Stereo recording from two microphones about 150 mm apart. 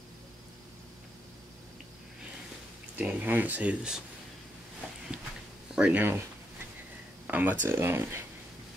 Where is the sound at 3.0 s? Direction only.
10° right (ahead or behind).